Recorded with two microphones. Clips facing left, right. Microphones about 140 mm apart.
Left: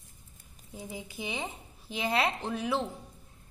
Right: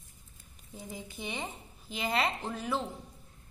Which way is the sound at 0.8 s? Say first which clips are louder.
Left 2 dB; 5° left (ahead or behind).